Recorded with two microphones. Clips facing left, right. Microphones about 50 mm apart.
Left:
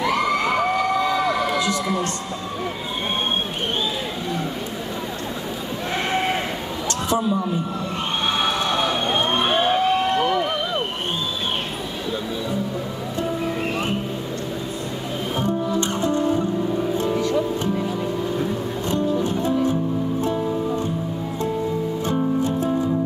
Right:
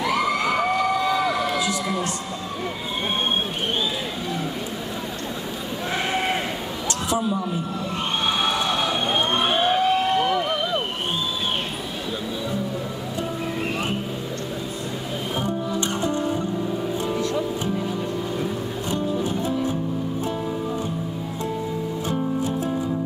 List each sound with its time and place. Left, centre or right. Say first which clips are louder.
0.0 s crowd: left 1 dB; centre
7.1 s a man's voice: left 3 dB; centre
8.4 s vehicle: left 1 dB; centre
15.3 s music: left 4 dB; centre
18.4 s music: left 2 dB; centre
22.0 s music: left 3 dB; centre